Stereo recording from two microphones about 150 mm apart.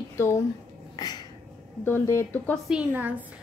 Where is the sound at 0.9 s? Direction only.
30° left (ahead or behind).